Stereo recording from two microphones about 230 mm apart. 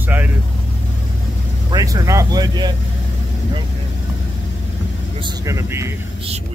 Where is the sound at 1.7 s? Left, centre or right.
Centre.